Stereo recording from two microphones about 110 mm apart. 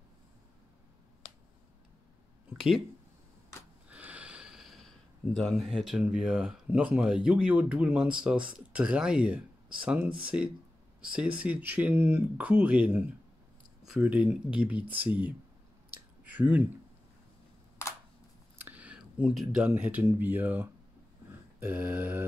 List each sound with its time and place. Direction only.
2.5 s speech: 5° right (ahead or behind)
3.9 s speech: 10° right (ahead or behind)
16.3 s speech: 15° right (ahead or behind)
18.6 s speech: 15° right (ahead or behind)